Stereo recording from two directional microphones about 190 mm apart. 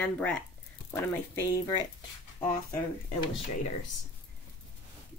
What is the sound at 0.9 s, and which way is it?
Speech, 15° left (ahead or behind).